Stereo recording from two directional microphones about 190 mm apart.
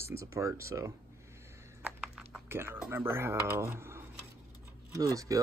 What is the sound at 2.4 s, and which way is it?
Speech, 10° right (ahead or behind).